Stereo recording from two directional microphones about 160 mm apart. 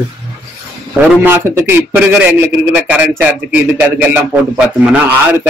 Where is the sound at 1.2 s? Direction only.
15° right (ahead or behind).